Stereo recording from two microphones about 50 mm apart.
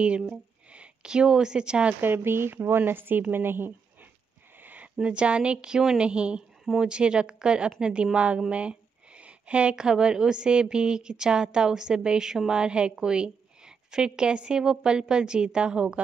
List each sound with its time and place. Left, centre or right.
0.3 s a woman's voice: centre
2.0 s speech: right
5.0 s a woman's voice: right
6.6 s a woman's voice: centre
6.9 s a woman's voice: centre